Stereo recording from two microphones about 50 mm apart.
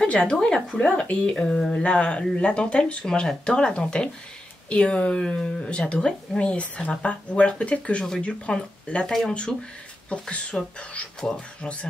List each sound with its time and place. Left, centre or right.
0.1 s speech: centre
10.5 s speech: centre